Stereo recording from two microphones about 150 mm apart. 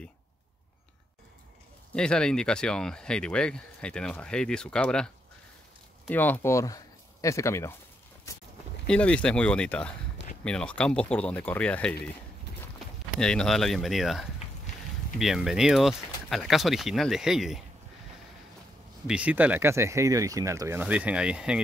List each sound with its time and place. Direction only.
2.0 s speech: 5° left (ahead or behind)
8.8 s speech: 5° left (ahead or behind)
13.2 s speech: 5° left (ahead or behind)
19.0 s speech: 10° right (ahead or behind)
20.8 s speech: 10° right (ahead or behind)